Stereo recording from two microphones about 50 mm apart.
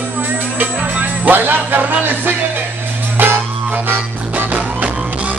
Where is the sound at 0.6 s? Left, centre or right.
Right.